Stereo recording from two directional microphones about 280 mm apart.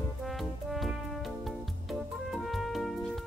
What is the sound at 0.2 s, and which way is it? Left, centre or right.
Music, centre.